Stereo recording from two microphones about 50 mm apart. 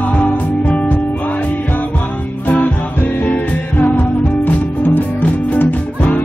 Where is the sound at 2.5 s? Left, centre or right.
Left.